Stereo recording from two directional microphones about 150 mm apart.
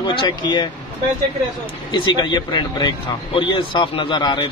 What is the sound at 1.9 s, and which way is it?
Speech, 30° left (ahead or behind).